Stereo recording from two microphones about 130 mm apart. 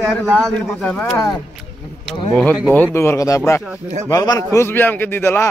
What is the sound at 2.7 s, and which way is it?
A man's voice, 15° left (ahead or behind).